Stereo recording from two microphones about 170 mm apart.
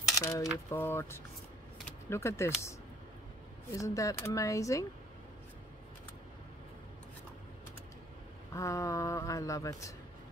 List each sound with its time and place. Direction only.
0.2 s coin: 20° left (ahead or behind)
0.7 s speech: 15° left (ahead or behind)
3.7 s speech: 20° left (ahead or behind)
8.5 s speech: 20° left (ahead or behind)